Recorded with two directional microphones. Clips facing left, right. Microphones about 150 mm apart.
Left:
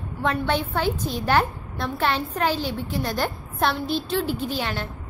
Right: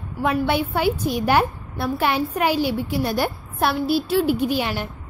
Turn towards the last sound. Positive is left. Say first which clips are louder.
# right 5 dB
turn(degrees=-15)  # may be behind; listen again after turning